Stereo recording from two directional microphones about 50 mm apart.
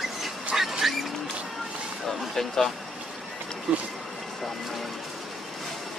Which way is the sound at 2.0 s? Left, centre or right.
Centre.